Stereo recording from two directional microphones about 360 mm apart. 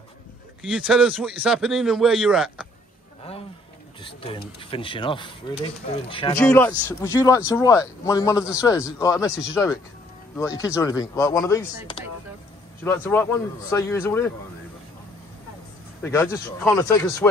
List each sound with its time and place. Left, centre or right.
0.6 s a man's voice: centre
4.0 s speech: centre
16.0 s speech: centre